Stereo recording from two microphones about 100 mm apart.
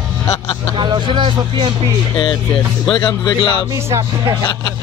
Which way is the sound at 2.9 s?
50° left (ahead or behind).